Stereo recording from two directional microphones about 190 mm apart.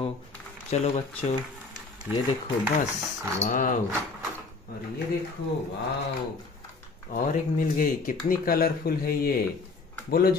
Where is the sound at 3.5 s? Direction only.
45° left (ahead or behind).